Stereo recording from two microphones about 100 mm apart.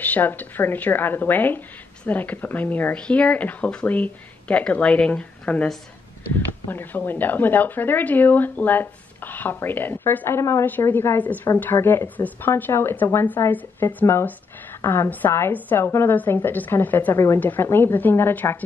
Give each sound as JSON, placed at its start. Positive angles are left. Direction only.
{"t": 0.0, "sound": "speech", "side_deg": 20}